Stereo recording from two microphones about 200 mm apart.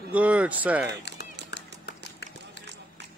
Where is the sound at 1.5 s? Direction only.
60° left (ahead or behind).